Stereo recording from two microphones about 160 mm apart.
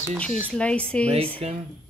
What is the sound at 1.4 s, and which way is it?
Speech, 40° right (ahead or behind).